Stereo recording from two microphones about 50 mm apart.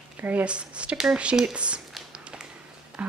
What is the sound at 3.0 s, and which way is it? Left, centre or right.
Speech, right.